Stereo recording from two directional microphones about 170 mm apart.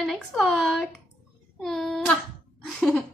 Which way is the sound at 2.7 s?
Centre (ahead or behind).